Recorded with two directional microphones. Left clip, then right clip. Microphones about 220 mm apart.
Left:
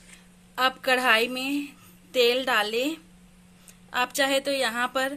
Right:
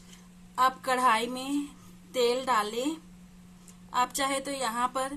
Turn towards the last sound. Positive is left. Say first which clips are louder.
# left 4 dB
turn(degrees=10)  # may be behind; listen again after turning